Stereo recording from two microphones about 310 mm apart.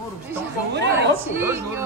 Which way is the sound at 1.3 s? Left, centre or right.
Centre.